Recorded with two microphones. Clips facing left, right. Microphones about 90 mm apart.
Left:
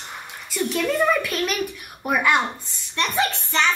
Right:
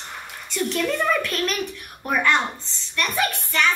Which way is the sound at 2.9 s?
25° left (ahead or behind).